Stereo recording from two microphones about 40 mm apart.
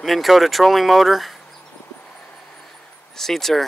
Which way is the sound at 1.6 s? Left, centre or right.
Centre.